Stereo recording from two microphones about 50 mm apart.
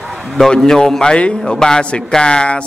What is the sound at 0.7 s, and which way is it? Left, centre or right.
A man's voice, centre.